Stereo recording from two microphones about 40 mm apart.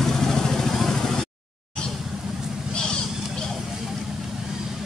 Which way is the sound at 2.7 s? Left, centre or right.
Left.